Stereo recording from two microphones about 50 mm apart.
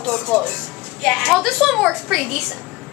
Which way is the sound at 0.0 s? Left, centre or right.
Left.